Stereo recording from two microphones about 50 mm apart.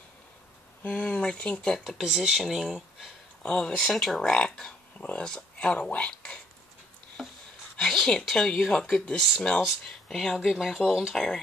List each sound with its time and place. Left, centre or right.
0.8 s speech: left
1.9 s speech: centre
3.4 s speech: centre
3.7 s speech: centre
4.3 s speech: centre
7.2 s a sound: centre
8.3 s speech: centre
9.8 s speech: centre